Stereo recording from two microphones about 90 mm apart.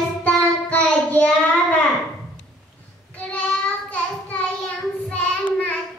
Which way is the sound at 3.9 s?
20° left (ahead or behind).